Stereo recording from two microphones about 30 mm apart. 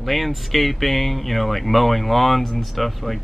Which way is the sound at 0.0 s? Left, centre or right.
Centre.